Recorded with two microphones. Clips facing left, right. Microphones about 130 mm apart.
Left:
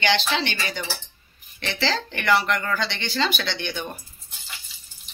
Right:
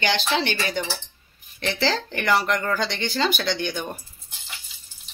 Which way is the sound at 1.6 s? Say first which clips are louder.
Right 2 dB; 45° right (ahead or behind).